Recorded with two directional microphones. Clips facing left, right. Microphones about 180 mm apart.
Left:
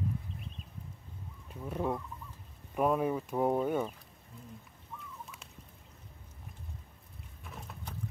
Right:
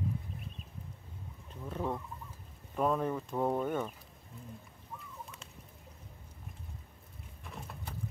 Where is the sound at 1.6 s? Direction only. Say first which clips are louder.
Left 2 dB; 10° left (ahead or behind).